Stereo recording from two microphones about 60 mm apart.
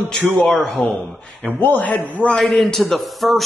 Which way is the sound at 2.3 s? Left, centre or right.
Centre.